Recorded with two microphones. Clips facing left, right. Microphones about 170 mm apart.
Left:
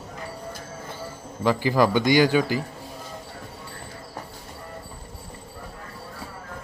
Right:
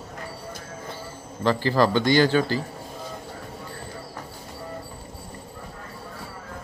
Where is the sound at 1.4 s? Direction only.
15° left (ahead or behind).